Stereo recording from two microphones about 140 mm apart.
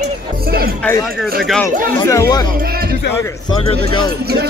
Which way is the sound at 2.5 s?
90° right.